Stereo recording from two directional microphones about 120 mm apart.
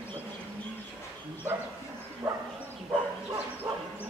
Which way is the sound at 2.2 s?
20° right (ahead or behind).